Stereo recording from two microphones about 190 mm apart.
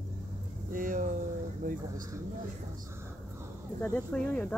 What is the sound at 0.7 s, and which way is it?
Speech, 45° right (ahead or behind).